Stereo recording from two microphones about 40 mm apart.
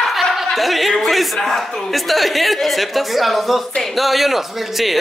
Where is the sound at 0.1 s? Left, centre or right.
Centre.